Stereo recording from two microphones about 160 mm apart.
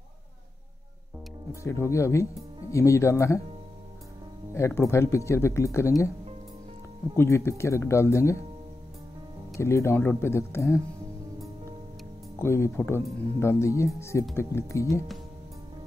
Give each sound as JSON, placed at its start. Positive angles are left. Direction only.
{"t": 1.5, "sound": "speech", "side_deg": 15}
{"t": 4.6, "sound": "speech", "side_deg": 15}
{"t": 7.2, "sound": "speech", "side_deg": 15}
{"t": 9.6, "sound": "speech", "side_deg": 15}
{"t": 12.4, "sound": "speech", "side_deg": 15}